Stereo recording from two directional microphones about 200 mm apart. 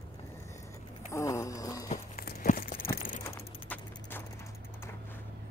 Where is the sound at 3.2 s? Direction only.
15° left (ahead or behind).